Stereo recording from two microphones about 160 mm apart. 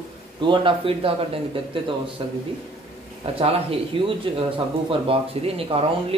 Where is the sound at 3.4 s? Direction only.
35° right (ahead or behind).